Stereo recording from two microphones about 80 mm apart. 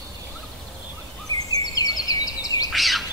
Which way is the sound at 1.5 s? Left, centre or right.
Left.